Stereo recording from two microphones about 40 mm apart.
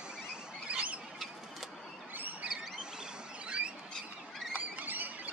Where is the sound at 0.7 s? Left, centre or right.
Right.